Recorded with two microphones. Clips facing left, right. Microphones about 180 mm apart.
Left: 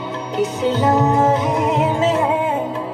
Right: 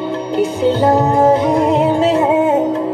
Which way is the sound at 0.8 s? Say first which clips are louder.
Right 3 dB; 35° right (ahead or behind).